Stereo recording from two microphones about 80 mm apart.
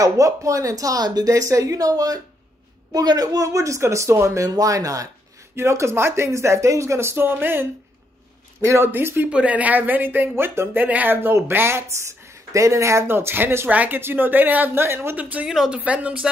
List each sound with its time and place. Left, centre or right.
0.0 s speech: right
4.5 s speech: right
15.1 s speech: centre
15.4 s speech: centre
15.8 s speech: centre